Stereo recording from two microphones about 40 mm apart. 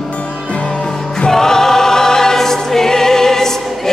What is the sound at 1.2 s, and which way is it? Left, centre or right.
Choir, centre.